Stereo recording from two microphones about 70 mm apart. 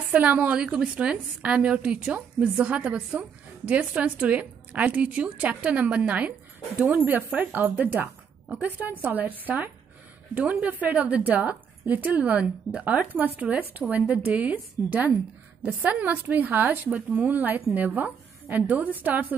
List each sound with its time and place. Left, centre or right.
0.1 s a woman's voice: right
0.6 s a woman's voice: centre